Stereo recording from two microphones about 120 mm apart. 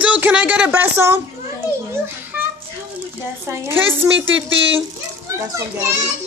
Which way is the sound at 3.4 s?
20° right (ahead or behind).